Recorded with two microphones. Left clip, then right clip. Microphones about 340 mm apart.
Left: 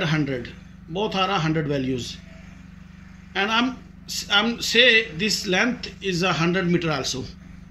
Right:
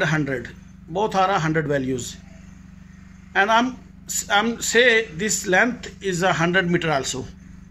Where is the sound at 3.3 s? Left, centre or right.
Right.